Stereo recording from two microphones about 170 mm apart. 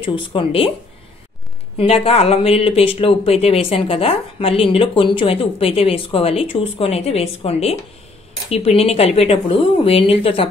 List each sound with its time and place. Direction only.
0.0 s speech: 30° left (ahead or behind)
1.8 s speech: 35° left (ahead or behind)